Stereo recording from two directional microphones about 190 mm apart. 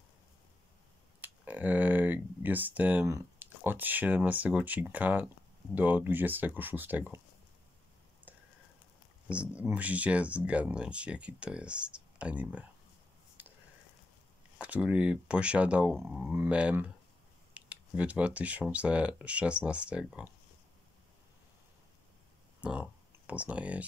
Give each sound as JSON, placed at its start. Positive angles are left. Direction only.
{"t": 1.2, "sound": "speech", "side_deg": -10}
{"t": 8.3, "sound": "a sound", "side_deg": -10}
{"t": 9.3, "sound": "speech", "side_deg": -5}
{"t": 13.4, "sound": "a sound", "side_deg": -10}
{"t": 14.6, "sound": "speech", "side_deg": -5}
{"t": 22.6, "sound": "speech", "side_deg": -5}